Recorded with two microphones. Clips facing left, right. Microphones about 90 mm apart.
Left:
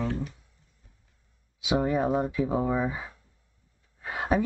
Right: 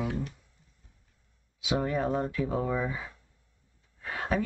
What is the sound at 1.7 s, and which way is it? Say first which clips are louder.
Speech: left 3 dB; 15° left (ahead or behind).